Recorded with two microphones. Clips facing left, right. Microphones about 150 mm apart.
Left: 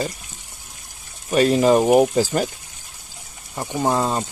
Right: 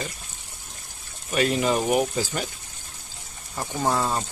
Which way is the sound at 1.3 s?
40° left (ahead or behind).